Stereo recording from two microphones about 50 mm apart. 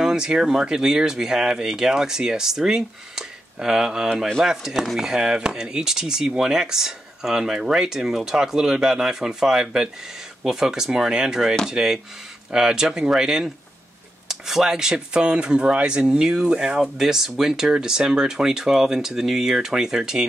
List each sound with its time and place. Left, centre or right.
0.0 s speech: centre